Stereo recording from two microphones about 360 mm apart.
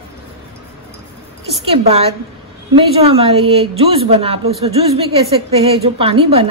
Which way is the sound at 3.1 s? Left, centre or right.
Centre.